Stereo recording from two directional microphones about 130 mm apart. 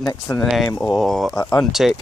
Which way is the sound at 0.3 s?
25° left (ahead or behind).